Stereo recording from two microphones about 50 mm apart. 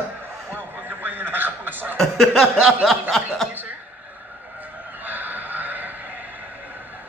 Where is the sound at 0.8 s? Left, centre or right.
Right.